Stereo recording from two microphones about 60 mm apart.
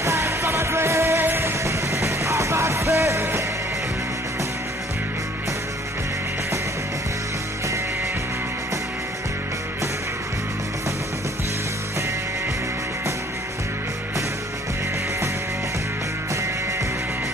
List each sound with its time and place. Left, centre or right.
0.0 s music: right
1.6 s music: right